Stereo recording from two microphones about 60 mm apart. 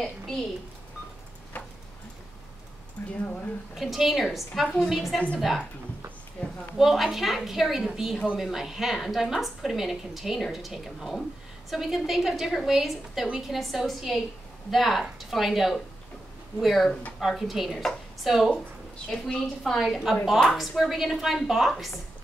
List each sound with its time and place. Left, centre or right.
3.0 s speech: left
3.7 s a woman's voice: centre
6.4 s a sound: centre
6.8 s a woman's voice: centre